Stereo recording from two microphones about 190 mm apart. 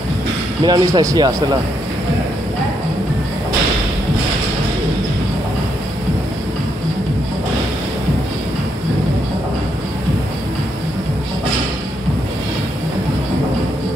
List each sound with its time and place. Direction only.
0.7 s speech: 20° right (ahead or behind)